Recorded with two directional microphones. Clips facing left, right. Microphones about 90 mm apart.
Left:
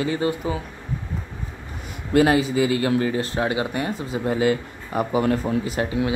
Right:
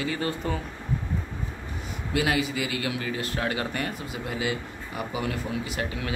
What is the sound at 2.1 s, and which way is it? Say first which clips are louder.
Speech: left 8 dB; 35° left (ahead or behind).